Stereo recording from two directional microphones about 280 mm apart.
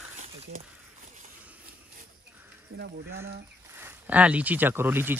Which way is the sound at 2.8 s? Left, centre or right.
Right.